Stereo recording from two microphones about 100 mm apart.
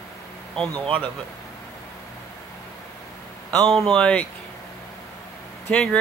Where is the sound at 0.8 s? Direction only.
60° right (ahead or behind).